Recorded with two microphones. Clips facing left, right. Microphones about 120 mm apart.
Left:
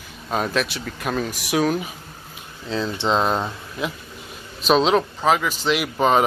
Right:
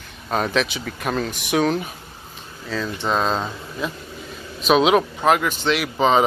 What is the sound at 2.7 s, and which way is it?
Speech, 25° left (ahead or behind).